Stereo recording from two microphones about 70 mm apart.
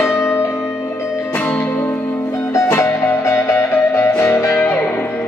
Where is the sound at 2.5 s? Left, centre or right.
Left.